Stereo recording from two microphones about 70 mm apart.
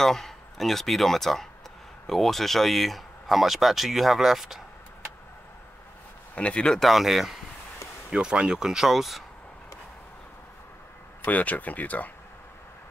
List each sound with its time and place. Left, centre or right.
0.0 s speech: centre
6.3 s speech: centre
6.8 s speech: centre
11.2 s speech: left